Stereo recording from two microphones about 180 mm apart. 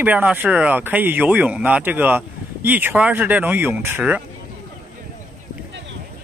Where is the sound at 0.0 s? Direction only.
10° right (ahead or behind).